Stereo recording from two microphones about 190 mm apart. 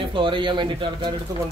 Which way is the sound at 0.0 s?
25° right (ahead or behind).